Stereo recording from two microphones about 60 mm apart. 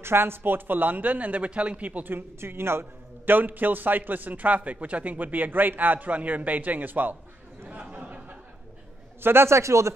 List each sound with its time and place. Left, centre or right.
0.0 s speech: right
7.9 s a sound: right
9.2 s a man's voice: right